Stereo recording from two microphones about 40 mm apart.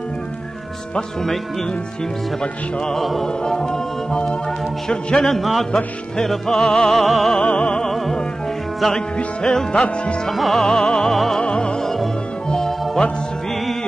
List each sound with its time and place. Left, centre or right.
3.0 s music: centre
3.4 s music: centre
4.8 s music: left
5.3 s music: centre
6.9 s music: centre
7.5 s music: left
8.9 s music: centre
10.5 s music: centre
11.4 s music: centre